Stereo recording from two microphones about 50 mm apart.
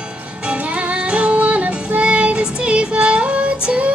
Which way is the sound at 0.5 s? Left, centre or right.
Right.